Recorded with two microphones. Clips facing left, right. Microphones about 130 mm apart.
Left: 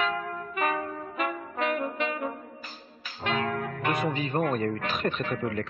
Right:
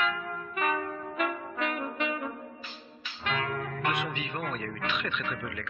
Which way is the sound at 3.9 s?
40° left (ahead or behind).